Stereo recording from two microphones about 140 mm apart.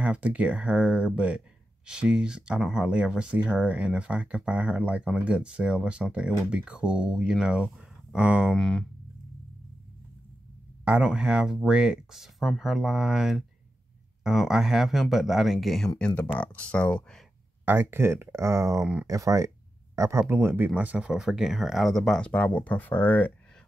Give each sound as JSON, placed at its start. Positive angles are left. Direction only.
{"t": 0.0, "sound": "speech", "side_deg": -10}
{"t": 8.5, "sound": "speech", "side_deg": 5}
{"t": 10.9, "sound": "speech", "side_deg": -5}
{"t": 17.6, "sound": "speech", "side_deg": -15}